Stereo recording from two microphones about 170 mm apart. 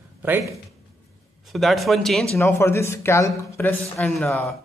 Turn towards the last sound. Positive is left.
turn(degrees=10)  # may be behind; listen again after turning